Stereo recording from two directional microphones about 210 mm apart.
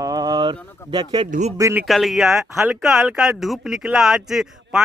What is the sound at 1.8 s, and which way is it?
Speech, centre (ahead or behind).